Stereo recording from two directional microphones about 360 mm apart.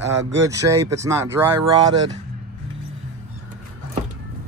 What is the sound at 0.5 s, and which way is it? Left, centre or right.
Speech, centre.